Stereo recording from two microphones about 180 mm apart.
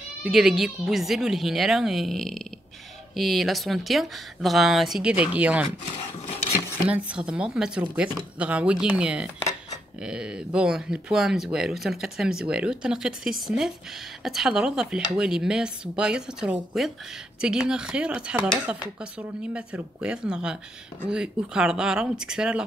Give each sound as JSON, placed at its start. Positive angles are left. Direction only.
{"t": 0.2, "sound": "speech", "side_deg": 0}
{"t": 6.9, "sound": "speech", "side_deg": -5}